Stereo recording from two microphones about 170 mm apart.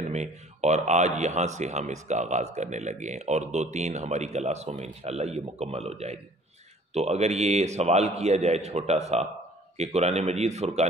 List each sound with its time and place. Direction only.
0.1 s speech: 40° right (ahead or behind)